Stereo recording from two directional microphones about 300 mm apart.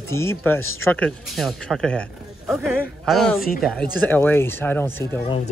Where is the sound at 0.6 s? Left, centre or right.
Right.